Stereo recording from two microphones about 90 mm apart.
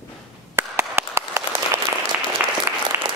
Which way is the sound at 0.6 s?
25° right (ahead or behind).